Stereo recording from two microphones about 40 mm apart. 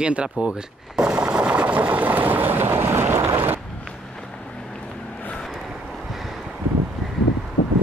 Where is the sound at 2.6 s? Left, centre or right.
Right.